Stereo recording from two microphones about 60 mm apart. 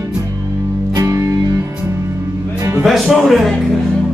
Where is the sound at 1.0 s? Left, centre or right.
Right.